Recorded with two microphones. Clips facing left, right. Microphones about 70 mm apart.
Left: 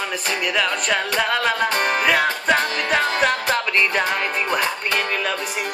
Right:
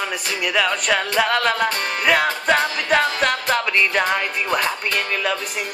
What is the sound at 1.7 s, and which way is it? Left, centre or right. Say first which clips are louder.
Music: left 5 dB; left.